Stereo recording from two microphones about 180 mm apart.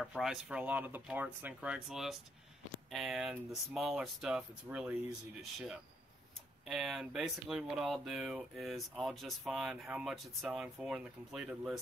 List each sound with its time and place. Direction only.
0.0 s speech: centre (ahead or behind)